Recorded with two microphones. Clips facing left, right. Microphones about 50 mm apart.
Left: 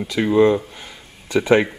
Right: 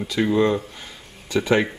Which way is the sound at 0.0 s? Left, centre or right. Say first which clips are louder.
Left 4 dB; centre.